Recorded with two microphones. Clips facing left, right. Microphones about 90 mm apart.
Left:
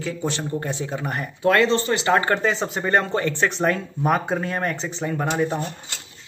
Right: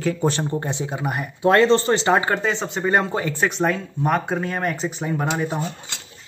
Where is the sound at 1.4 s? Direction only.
30° right (ahead or behind).